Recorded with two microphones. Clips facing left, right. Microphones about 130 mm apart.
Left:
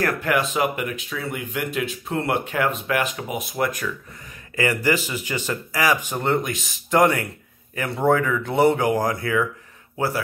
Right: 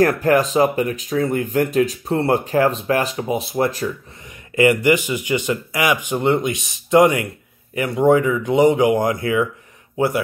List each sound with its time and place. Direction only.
0.0 s speech: 40° right (ahead or behind)
4.6 s a man's voice: 20° right (ahead or behind)